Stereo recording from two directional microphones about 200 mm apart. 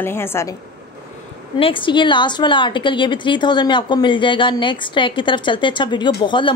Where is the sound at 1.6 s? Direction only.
25° left (ahead or behind).